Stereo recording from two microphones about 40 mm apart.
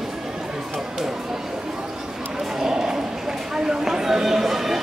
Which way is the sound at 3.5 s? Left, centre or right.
Centre.